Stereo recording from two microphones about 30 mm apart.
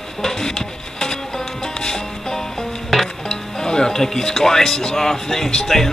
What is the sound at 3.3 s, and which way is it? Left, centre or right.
Music, left.